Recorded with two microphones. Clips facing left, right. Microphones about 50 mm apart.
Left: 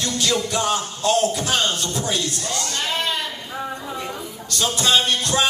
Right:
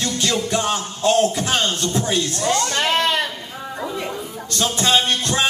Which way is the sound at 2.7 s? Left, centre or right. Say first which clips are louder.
Right 5 dB; right.